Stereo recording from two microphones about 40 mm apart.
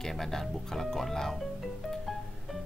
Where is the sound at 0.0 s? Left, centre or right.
Centre.